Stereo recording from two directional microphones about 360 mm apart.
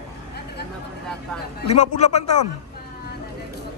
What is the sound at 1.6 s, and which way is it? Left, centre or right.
Speech, centre.